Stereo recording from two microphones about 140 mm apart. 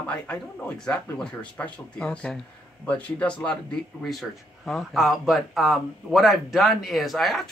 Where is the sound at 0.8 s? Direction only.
5° left (ahead or behind).